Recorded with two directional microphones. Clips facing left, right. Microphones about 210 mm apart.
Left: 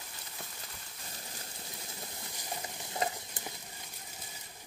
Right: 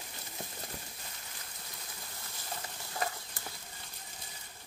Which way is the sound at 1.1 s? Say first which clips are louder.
Left 4 dB; 30° left (ahead or behind).